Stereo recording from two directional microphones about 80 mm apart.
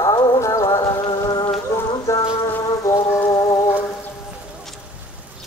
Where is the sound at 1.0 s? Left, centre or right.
Left.